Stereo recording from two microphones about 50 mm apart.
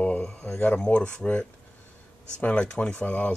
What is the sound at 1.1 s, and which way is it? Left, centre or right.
Speech, left.